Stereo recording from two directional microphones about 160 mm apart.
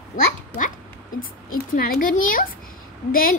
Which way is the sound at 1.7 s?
65° left (ahead or behind).